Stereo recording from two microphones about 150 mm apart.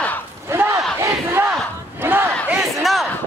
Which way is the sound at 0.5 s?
15° right (ahead or behind).